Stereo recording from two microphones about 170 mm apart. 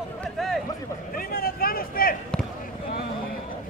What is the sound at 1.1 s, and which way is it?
Vehicle, 60° left (ahead or behind).